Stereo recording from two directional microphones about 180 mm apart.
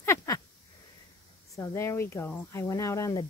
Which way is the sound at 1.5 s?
15° left (ahead or behind).